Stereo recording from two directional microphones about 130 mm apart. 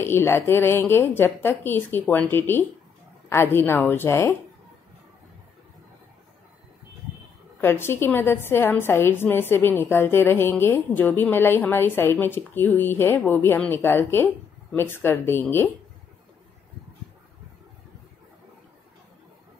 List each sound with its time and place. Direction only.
0.0 s a woman's voice: 20° left (ahead or behind)
7.6 s a woman's voice: 20° left (ahead or behind)